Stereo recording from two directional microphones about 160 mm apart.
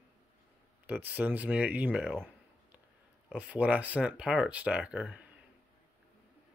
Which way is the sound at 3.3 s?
5° right (ahead or behind).